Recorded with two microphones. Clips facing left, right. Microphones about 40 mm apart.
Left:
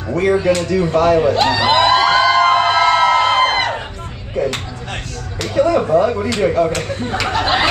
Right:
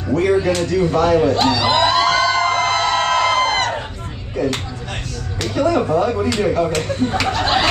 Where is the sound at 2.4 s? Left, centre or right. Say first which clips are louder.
Left 5 dB; left.